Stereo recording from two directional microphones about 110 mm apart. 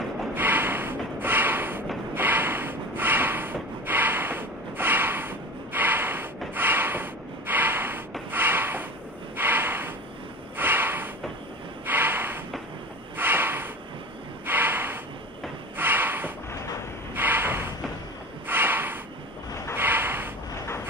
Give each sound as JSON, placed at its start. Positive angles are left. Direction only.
{"t": 0.3, "sound": "snort", "side_deg": -20}
{"t": 6.5, "sound": "a sound", "side_deg": -20}
{"t": 8.3, "sound": "rub", "side_deg": -20}
{"t": 9.4, "sound": "snort", "side_deg": -20}
{"t": 14.4, "sound": "gasp", "side_deg": -20}
{"t": 15.8, "sound": "a sound", "side_deg": -20}
{"t": 17.1, "sound": "snort", "side_deg": -20}
{"t": 19.5, "sound": "a sound", "side_deg": 25}
{"t": 19.8, "sound": "snort", "side_deg": -20}